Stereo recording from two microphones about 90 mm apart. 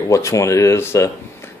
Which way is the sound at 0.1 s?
35° left (ahead or behind).